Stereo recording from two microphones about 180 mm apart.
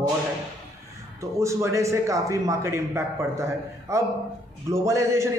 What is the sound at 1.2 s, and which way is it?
A man's voice, 15° right (ahead or behind).